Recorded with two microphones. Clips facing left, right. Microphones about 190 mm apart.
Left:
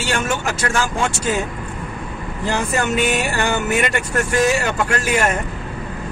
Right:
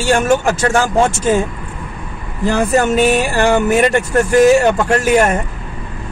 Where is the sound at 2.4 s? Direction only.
35° right (ahead or behind).